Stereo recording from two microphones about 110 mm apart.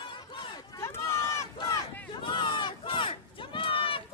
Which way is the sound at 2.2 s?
45° left (ahead or behind).